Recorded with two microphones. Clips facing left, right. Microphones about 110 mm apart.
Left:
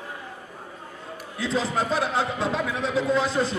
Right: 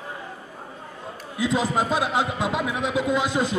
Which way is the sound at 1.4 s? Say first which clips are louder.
Right 3 dB; 15° right (ahead or behind).